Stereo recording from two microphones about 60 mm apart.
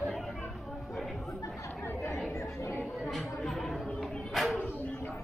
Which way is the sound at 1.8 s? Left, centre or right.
Left.